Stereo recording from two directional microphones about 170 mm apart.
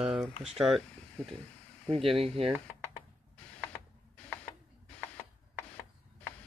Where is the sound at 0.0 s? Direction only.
Centre (ahead or behind).